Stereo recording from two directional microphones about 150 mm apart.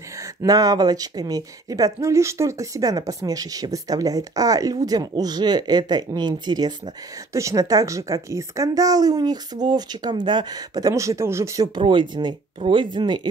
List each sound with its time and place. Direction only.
0.4 s speech: 25° right (ahead or behind)